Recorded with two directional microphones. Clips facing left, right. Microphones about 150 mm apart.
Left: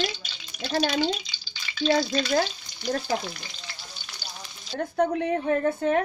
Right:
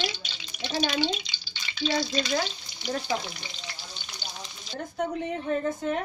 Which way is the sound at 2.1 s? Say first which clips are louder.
Left 4 dB; 45° left (ahead or behind).